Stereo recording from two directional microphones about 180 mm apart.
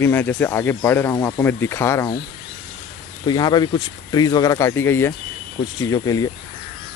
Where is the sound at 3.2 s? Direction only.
25° left (ahead or behind).